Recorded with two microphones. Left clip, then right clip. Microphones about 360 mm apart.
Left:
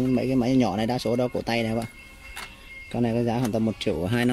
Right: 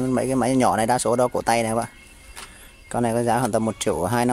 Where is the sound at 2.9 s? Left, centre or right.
Right.